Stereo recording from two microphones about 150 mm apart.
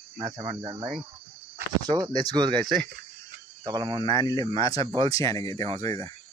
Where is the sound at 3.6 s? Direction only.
30° right (ahead or behind).